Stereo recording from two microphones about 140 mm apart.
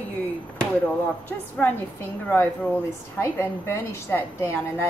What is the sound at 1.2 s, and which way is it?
A woman's voice, 10° left (ahead or behind).